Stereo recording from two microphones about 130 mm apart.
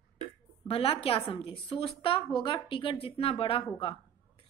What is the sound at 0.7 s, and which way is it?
A woman's voice, 45° left (ahead or behind).